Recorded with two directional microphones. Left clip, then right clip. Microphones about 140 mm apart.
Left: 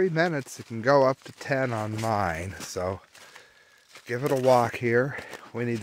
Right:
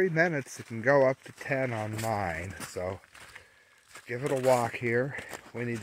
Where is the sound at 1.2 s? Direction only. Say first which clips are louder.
Left 3 dB; 45° left (ahead or behind).